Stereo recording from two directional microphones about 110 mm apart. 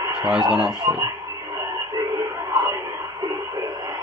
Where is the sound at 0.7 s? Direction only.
40° right (ahead or behind).